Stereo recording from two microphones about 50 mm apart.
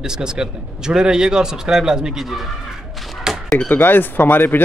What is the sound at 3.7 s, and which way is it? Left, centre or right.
Speech, left.